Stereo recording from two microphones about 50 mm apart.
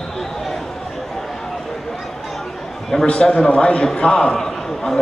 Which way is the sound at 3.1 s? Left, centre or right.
Centre.